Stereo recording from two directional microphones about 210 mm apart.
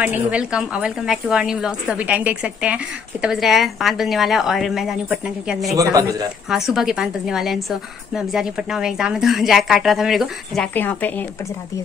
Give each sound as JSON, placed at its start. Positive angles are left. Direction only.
{"t": 0.0, "sound": "a woman's voice", "side_deg": -5}
{"t": 5.8, "sound": "a man's voice", "side_deg": -15}
{"t": 6.5, "sound": "a woman's voice", "side_deg": 0}